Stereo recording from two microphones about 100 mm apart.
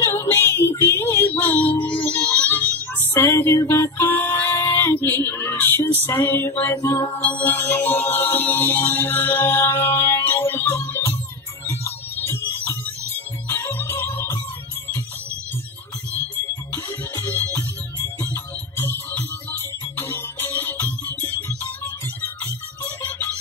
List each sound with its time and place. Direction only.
0.0 s child singing: 25° left (ahead or behind)
2.0 s a sound: 15° left (ahead or behind)
6.0 s music: 20° left (ahead or behind)
16.7 s music: 25° left (ahead or behind)
22.4 s music: 20° left (ahead or behind)